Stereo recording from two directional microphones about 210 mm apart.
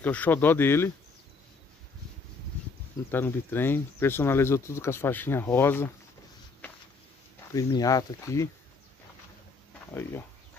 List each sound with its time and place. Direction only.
0.0 s speech: 5° left (ahead or behind)
3.1 s speech: 10° left (ahead or behind)
7.5 s speech: 15° left (ahead or behind)